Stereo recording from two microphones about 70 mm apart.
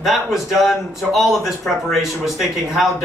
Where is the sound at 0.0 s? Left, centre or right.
Centre.